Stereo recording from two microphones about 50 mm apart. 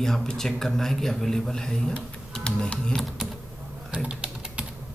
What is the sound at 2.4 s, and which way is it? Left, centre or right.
Speech, left.